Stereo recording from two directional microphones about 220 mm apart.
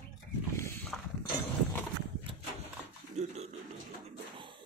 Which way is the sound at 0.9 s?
Centre (ahead or behind).